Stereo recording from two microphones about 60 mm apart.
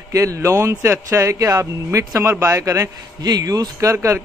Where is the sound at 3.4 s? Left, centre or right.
Right.